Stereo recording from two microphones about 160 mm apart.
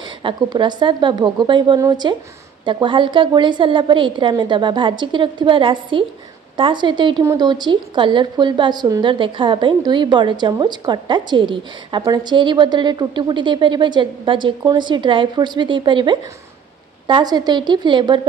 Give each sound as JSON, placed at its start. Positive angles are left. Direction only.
{"t": 0.2, "sound": "a woman's voice", "side_deg": -30}